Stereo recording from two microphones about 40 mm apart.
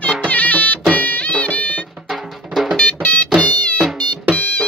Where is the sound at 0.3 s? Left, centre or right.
Left.